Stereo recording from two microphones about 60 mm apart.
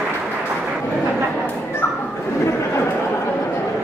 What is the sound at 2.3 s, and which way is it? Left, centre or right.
Chatter, left.